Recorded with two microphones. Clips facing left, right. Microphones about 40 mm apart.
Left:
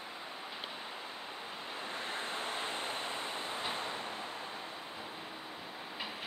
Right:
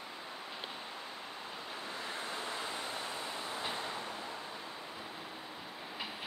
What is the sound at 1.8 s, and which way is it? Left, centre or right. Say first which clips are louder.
Waves: left 2 dB; left.